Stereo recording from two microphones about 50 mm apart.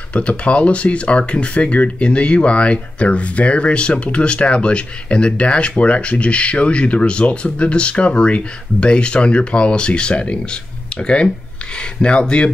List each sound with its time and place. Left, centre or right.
0.1 s speech: left